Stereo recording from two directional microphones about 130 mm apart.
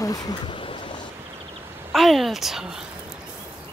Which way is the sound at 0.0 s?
30° left (ahead or behind).